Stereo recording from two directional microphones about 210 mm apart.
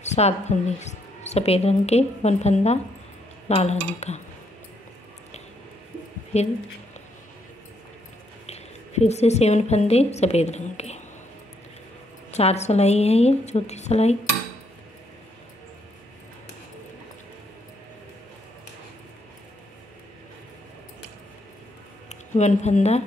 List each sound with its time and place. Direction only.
0.0 s speech: 35° left (ahead or behind)
6.3 s speech: 30° left (ahead or behind)
8.5 s a woman's voice: 30° left (ahead or behind)
12.3 s speech: 30° left (ahead or behind)
22.1 s speech: 35° left (ahead or behind)